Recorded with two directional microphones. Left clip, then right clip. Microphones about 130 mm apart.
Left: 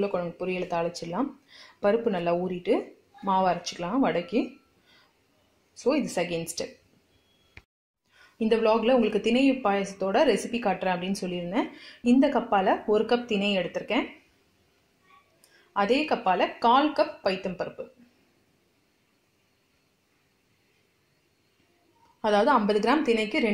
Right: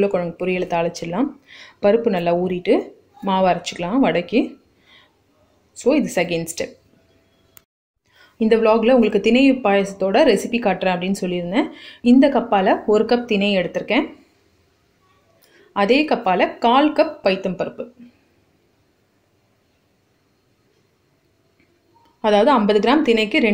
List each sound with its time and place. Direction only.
0.0 s speech: 25° right (ahead or behind)
5.8 s speech: 25° right (ahead or behind)
8.2 s speech: 20° right (ahead or behind)
15.7 s speech: 20° right (ahead or behind)
22.2 s a woman's voice: 20° right (ahead or behind)